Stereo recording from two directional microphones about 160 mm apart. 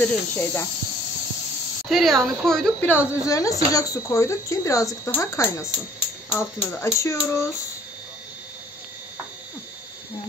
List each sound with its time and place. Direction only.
0.0 s speech: 15° left (ahead or behind)
1.9 s speech: centre (ahead or behind); by 7.4 s 20° left (ahead or behind)